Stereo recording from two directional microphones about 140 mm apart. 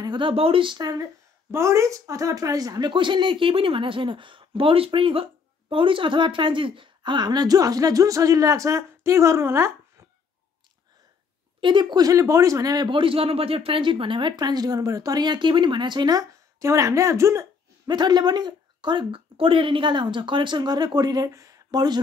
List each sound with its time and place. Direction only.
0.0 s speech: 35° right (ahead or behind)
11.6 s speech: 35° right (ahead or behind)